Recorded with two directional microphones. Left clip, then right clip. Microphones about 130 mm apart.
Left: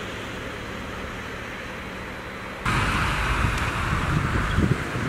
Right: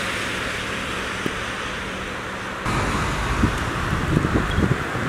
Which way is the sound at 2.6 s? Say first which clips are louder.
Left 1 dB; 35° left (ahead or behind).